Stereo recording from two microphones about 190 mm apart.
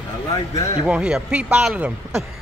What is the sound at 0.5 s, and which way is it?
Speech, 15° left (ahead or behind).